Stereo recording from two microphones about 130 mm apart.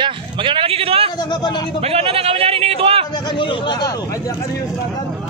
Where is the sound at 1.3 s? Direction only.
35° left (ahead or behind).